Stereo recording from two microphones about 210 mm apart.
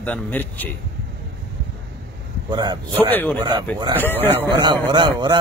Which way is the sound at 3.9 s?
10° left (ahead or behind).